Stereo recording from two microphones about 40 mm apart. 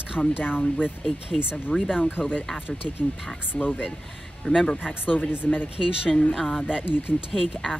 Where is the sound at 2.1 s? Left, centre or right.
Left.